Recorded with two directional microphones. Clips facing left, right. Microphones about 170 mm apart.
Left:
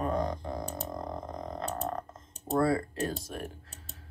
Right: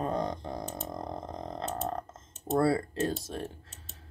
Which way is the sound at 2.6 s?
30° right (ahead or behind).